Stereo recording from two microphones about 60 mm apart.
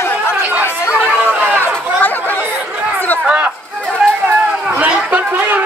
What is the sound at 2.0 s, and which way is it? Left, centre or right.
Chatter, left.